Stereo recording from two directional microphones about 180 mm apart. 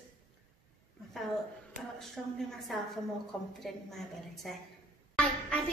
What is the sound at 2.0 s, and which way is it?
A woman's voice, centre (ahead or behind).